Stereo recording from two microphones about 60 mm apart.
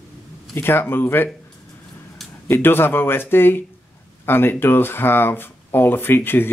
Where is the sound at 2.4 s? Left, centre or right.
Left.